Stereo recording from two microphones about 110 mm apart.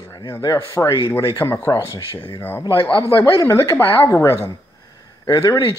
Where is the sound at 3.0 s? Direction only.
25° left (ahead or behind).